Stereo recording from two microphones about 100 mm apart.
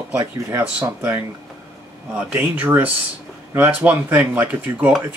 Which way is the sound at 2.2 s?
15° right (ahead or behind).